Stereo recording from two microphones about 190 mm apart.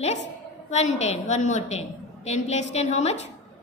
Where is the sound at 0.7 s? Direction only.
35° left (ahead or behind).